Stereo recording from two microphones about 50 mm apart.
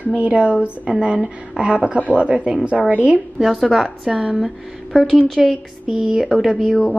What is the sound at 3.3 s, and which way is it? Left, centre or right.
Speech, centre.